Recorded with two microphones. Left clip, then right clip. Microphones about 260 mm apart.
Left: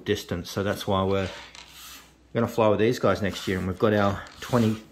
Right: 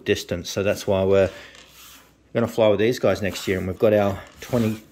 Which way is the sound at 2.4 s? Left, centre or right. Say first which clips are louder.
Right 3 dB; centre.